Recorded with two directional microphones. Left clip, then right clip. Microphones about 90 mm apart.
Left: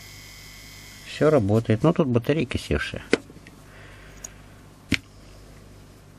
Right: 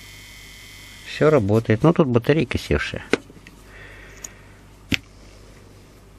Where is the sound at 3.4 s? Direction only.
25° right (ahead or behind).